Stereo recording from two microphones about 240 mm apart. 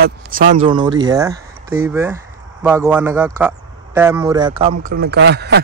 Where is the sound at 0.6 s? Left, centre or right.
Centre.